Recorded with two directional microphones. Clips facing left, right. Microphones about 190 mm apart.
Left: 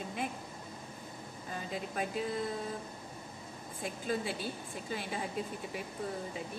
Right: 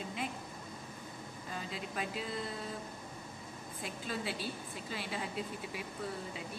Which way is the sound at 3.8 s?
45° left (ahead or behind).